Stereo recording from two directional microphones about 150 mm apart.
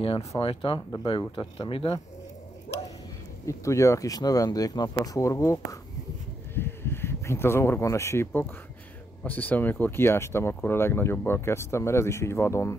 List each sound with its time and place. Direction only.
0.0 s speech: 40° left (ahead or behind)
3.4 s speech: 20° left (ahead or behind)